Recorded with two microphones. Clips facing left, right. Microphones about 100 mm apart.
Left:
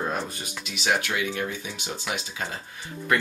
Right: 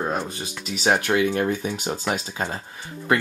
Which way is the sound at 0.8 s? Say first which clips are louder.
Right 6 dB; 40° right (ahead or behind).